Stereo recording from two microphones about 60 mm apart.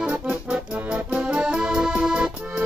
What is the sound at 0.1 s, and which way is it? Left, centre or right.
Accordion, right.